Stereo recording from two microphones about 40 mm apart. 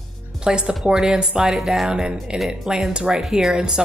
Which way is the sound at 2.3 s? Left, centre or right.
Centre.